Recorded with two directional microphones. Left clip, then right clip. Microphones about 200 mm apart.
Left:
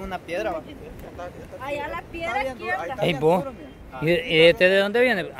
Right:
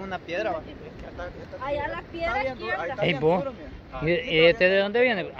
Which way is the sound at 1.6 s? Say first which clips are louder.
Even; 30° left (ahead or behind).